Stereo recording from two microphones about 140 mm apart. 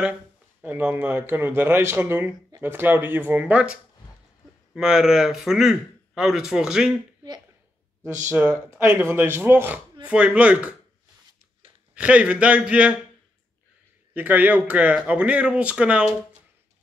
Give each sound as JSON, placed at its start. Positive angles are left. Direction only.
{"t": 0.6, "sound": "a man's voice", "side_deg": -10}
{"t": 8.3, "sound": "speech", "side_deg": -15}
{"t": 11.9, "sound": "speech", "side_deg": -10}
{"t": 14.1, "sound": "speech", "side_deg": -10}